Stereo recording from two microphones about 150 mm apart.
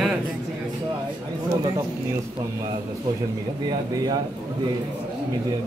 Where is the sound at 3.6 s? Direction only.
25° right (ahead or behind).